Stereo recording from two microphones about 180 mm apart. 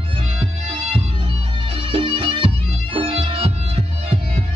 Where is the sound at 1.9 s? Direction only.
30° right (ahead or behind).